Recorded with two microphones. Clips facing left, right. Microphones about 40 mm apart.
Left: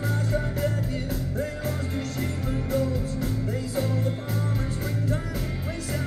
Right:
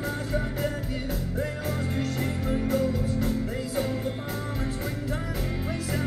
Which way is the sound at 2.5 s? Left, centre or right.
Centre.